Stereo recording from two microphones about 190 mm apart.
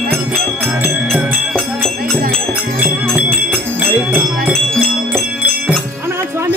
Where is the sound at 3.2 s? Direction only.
5° right (ahead or behind).